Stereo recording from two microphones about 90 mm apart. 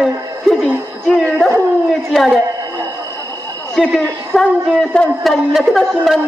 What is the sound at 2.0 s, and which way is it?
Speech, centre (ahead or behind).